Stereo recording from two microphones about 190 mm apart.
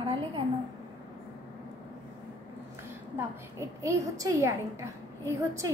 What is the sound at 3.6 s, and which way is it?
A woman's voice, 15° right (ahead or behind).